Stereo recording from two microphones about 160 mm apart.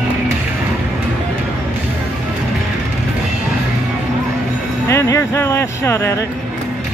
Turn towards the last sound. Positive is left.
turn(degrees=15)  # may be behind; listen again after turning